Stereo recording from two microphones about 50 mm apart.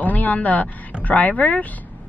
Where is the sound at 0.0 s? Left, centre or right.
Left.